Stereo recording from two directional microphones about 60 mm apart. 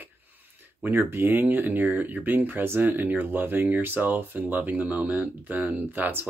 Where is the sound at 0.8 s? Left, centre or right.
Right.